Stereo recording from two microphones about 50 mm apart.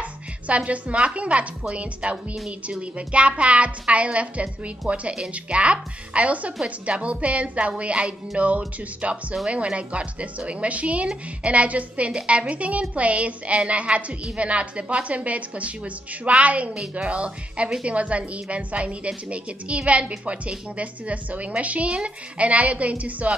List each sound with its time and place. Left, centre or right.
0.0 s a woman's voice: right